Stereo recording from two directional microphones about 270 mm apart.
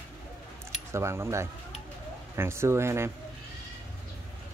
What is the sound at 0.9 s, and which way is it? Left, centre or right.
Speech, centre.